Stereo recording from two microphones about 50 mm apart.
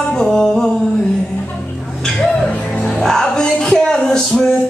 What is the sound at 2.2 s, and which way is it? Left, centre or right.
Music, left.